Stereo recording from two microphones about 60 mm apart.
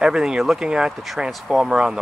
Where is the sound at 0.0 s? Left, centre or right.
Centre.